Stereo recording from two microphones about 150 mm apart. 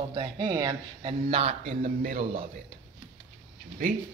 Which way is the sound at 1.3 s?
40° right (ahead or behind).